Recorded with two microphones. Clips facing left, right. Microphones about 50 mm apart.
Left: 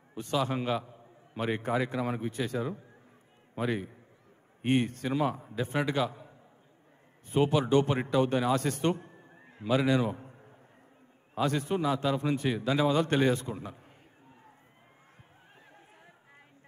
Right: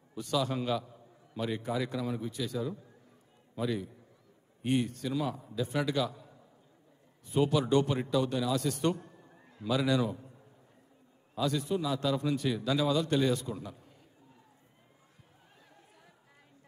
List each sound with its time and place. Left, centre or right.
0.1 s a man's voice: left